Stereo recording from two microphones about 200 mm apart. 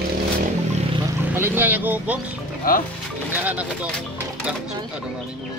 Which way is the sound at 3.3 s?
10° right (ahead or behind).